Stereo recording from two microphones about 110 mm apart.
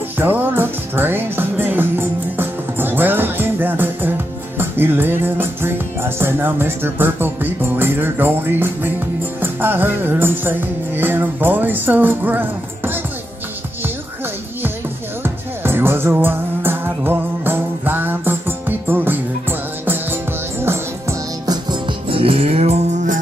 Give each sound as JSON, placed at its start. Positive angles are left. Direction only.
{"t": 0.2, "sound": "music", "side_deg": -20}
{"t": 15.2, "sound": "music", "side_deg": -20}
{"t": 20.6, "sound": "music", "side_deg": -20}
{"t": 22.1, "sound": "moo", "side_deg": -60}